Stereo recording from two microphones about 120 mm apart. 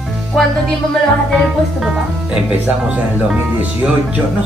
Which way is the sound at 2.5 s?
10° right (ahead or behind).